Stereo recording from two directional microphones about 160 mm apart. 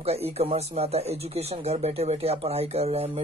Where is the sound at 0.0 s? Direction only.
40° right (ahead or behind).